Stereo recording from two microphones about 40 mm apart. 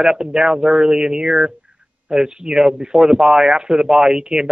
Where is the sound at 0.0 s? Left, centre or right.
Centre.